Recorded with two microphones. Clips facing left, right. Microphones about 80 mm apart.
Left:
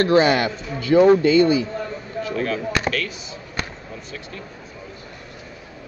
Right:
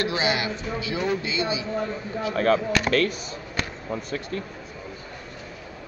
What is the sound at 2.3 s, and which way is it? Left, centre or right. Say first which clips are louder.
Speech: right 3 dB; right.